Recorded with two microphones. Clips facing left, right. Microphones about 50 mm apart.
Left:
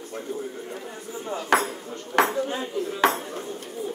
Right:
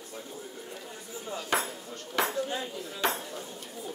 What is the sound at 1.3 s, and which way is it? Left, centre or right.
A man's voice, left.